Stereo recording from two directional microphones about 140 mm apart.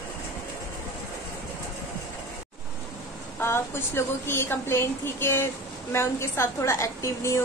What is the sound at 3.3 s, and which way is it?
A woman's voice, 15° left (ahead or behind).